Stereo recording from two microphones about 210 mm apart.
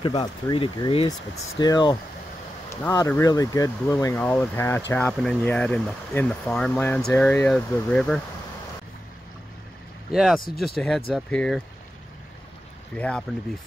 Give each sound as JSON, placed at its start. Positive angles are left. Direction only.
{"t": 0.0, "sound": "speech", "side_deg": 20}
{"t": 10.1, "sound": "speech", "side_deg": 0}
{"t": 12.9, "sound": "speech", "side_deg": 5}